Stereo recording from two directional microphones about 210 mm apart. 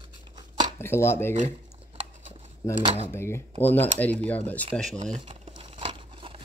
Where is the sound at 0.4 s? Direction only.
20° right (ahead or behind).